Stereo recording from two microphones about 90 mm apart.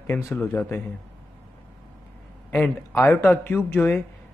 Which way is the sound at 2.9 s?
25° left (ahead or behind).